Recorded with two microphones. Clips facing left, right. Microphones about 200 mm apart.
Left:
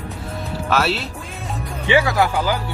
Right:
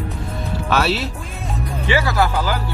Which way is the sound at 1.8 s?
15° left (ahead or behind).